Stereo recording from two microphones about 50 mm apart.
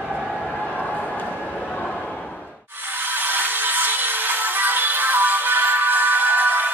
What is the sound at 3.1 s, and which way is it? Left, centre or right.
Music, right.